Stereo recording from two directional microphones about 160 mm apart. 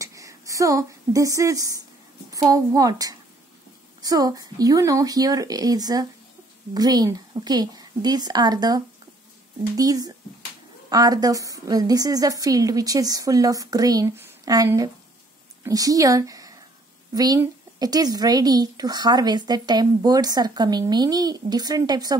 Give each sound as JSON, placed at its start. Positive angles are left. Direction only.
{"t": 0.0, "sound": "a woman's voice", "side_deg": -20}